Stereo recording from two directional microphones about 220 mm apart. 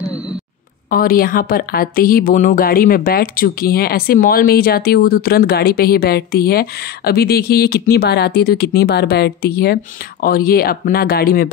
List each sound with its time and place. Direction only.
0.8 s a woman's voice: 40° left (ahead or behind)